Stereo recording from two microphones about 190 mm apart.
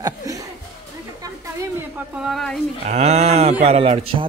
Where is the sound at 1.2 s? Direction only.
15° right (ahead or behind).